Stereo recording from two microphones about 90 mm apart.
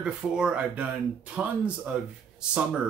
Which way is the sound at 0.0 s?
10° right (ahead or behind).